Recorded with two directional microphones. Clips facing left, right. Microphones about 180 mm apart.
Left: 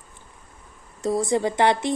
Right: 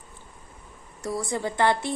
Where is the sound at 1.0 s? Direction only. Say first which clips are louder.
Left 7 dB; 20° left (ahead or behind).